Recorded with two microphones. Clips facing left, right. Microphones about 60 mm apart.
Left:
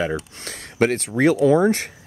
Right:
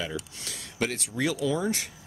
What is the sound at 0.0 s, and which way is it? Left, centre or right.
Speech, left.